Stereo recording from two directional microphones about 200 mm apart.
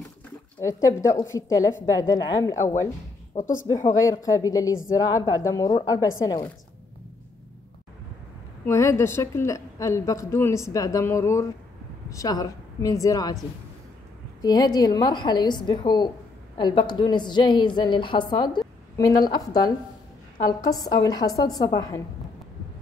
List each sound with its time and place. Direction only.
0.6 s a woman's voice: 15° left (ahead or behind)
3.3 s speech: 35° left (ahead or behind)
3.7 s a woman's voice: 15° left (ahead or behind)
8.6 s a woman's voice: 15° left (ahead or behind)
14.4 s a woman's voice: 20° left (ahead or behind)